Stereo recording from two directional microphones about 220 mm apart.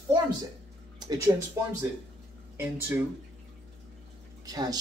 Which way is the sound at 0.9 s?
15° right (ahead or behind).